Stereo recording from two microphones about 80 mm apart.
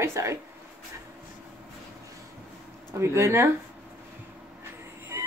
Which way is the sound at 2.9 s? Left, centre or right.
Right.